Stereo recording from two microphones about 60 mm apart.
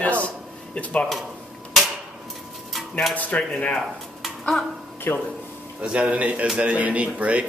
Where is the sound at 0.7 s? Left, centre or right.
Left.